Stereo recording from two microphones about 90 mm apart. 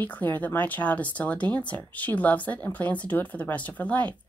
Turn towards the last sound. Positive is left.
turn(degrees=15)  # may be behind; listen again after turning